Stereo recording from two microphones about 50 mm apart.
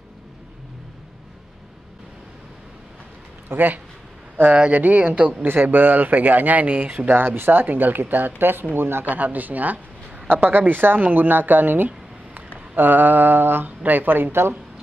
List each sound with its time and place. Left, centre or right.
3.4 s speech: right
7.1 s speech: right
9.0 s speech: right